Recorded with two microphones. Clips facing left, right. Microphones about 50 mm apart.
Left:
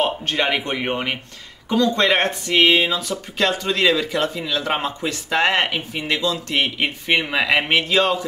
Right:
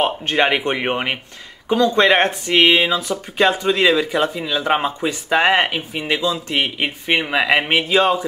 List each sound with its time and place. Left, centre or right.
0.0 s speech: right